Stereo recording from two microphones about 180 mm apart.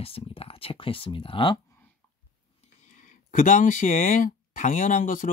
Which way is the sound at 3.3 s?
45° left (ahead or behind).